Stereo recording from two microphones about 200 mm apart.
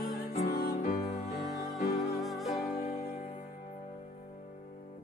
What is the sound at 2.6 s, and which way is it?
Music, 40° left (ahead or behind).